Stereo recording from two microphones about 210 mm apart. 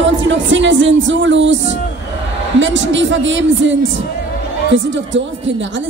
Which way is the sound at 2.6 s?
60° right (ahead or behind).